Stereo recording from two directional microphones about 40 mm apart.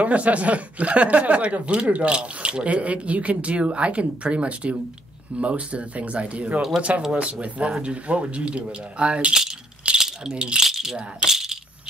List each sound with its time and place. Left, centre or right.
0.0 s a man's voice: right
9.9 s rattle: centre
10.3 s speech: right
10.6 s speech: centre
11.2 s coin: centre